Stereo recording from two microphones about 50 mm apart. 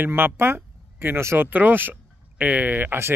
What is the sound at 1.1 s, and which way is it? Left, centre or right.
Speech, right.